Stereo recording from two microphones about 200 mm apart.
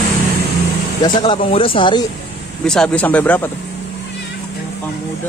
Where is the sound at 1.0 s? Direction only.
25° left (ahead or behind).